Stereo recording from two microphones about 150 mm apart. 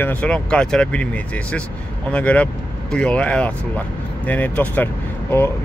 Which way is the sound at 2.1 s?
10° left (ahead or behind).